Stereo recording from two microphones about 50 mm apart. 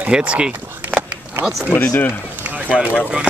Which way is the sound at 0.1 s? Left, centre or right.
Right.